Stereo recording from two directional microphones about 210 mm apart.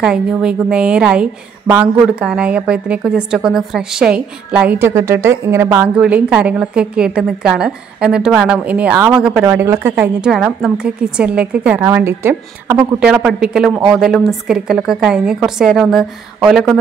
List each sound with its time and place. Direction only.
0.0 s a woman's voice: 5° right (ahead or behind)